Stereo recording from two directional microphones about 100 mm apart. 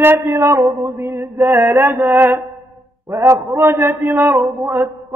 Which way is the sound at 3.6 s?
35° right (ahead or behind).